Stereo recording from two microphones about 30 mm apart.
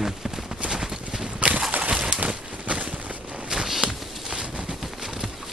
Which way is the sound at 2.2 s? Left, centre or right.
Right.